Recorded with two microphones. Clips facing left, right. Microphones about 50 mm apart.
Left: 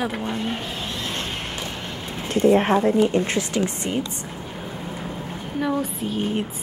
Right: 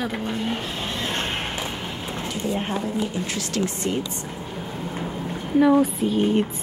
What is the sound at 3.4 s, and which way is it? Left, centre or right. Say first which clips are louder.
Speech: left 1 dB; centre.